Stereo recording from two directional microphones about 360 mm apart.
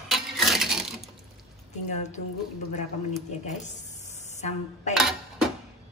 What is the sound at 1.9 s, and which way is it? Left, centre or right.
Speech, centre.